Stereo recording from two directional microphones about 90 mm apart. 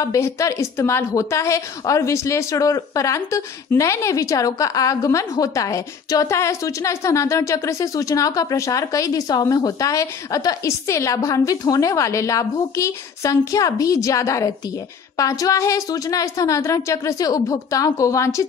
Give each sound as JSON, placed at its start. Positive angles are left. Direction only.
{"t": 0.0, "sound": "a woman's voice", "side_deg": 35}